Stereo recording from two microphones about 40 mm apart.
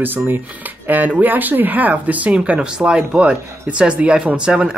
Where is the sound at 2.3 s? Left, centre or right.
Right.